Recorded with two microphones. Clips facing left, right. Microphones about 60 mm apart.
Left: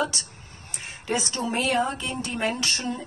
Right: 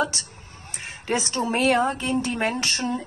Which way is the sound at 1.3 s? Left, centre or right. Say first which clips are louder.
Right 5 dB; right.